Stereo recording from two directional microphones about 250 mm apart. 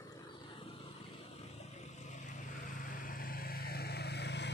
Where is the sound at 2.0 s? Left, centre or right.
Left.